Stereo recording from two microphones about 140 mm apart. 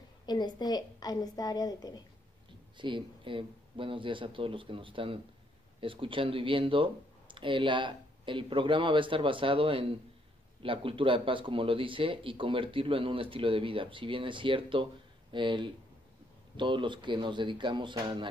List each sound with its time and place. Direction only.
0.3 s a woman's voice: 30° left (ahead or behind)
2.8 s speech: 35° right (ahead or behind)